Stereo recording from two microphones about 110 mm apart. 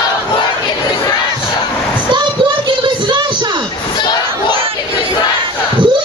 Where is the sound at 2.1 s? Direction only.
45° right (ahead or behind).